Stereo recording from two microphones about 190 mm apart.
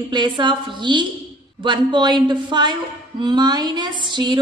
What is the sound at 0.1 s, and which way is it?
A woman's voice, 25° right (ahead or behind).